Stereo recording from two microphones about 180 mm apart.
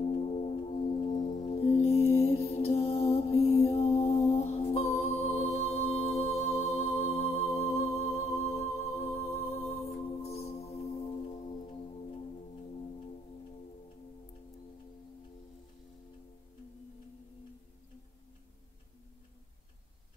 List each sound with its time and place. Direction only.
0.0 s music: 30° left (ahead or behind)